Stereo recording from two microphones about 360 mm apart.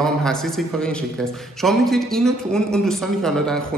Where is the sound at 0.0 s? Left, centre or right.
Centre.